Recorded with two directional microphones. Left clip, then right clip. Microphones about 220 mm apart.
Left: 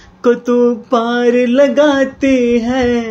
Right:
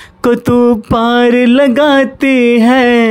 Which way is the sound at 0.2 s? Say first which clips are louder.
Right 2 dB; 40° right (ahead or behind).